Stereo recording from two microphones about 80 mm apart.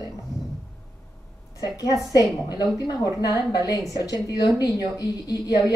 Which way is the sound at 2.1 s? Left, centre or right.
Left.